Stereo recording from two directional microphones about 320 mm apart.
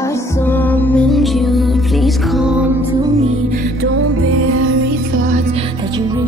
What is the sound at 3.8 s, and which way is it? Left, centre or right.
Music, right.